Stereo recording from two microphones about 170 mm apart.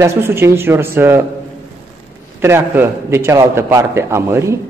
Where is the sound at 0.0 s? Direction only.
15° right (ahead or behind).